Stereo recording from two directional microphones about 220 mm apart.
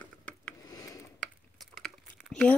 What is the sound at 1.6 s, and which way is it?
Crumpling, centre (ahead or behind).